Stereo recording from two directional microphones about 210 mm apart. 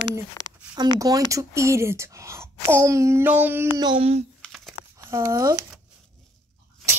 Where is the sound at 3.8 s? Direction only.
25° right (ahead or behind).